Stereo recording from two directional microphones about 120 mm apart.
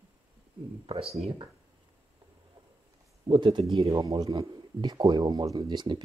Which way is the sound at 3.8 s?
35° right (ahead or behind).